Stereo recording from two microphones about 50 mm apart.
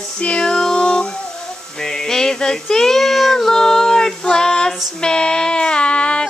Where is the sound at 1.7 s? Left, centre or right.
Centre.